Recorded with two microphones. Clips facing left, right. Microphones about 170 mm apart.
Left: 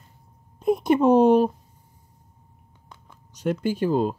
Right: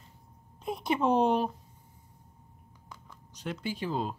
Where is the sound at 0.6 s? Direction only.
50° left (ahead or behind).